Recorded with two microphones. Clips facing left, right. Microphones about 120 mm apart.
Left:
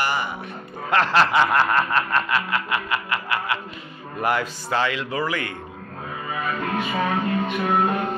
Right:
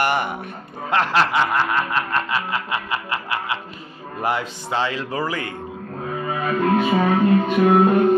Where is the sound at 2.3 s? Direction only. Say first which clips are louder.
Even; 25° right (ahead or behind).